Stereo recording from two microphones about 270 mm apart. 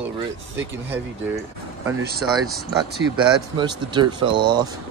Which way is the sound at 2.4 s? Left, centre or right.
Centre.